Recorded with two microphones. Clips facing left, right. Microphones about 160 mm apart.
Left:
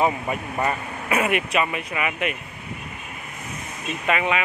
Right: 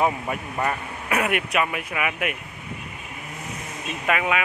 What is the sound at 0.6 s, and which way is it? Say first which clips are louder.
Speech: left 1 dB; 5° left (ahead or behind).